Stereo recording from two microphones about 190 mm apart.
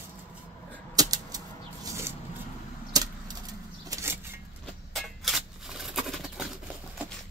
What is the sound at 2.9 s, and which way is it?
Keys jangling, 20° right (ahead or behind).